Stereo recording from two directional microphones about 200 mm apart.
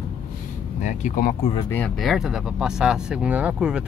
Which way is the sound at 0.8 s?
40° left (ahead or behind).